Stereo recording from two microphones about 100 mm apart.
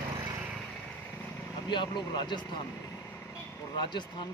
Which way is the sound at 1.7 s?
50° left (ahead or behind).